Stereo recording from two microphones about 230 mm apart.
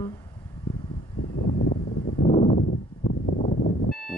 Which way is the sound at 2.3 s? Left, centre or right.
Left.